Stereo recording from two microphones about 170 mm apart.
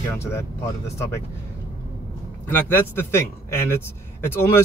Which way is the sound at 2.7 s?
15° left (ahead or behind).